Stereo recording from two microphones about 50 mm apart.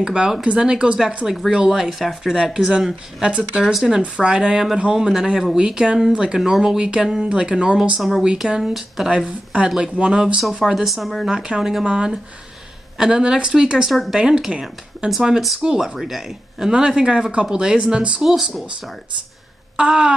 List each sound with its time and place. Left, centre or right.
0.0 s speech: centre
1.2 s speech: centre
3.2 s speech: right
3.6 s speech: centre
4.0 s speech: centre
9.1 s speech: right
10.6 s speech: centre
11.2 s speech: centre
15.0 s speech: right; by 16.3 s centre
16.5 s speech: centre
19.8 s speech: centre